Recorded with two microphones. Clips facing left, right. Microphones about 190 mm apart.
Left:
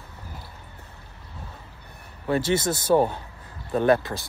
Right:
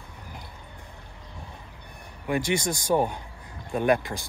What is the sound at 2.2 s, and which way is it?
Speech, 15° right (ahead or behind).